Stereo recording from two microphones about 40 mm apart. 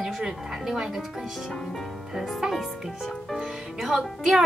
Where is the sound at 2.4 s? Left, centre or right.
Centre.